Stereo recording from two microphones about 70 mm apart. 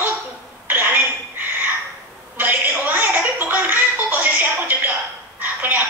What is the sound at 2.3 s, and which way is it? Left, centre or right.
Music, right.